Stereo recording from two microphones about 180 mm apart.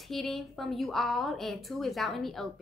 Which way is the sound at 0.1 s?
Centre (ahead or behind).